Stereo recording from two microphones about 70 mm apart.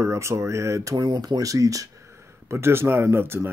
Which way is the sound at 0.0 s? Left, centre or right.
Right.